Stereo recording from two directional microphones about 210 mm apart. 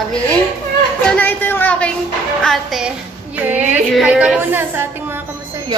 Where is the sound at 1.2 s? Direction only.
10° left (ahead or behind).